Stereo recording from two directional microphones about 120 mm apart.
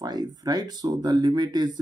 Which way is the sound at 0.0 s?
35° right (ahead or behind).